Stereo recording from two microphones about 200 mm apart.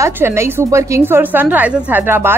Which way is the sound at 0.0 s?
15° right (ahead or behind).